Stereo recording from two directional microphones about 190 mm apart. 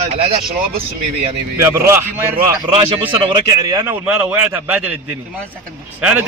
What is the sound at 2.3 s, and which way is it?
A man's voice, 30° right (ahead or behind).